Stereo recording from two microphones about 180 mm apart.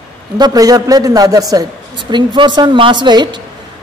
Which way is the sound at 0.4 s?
20° right (ahead or behind).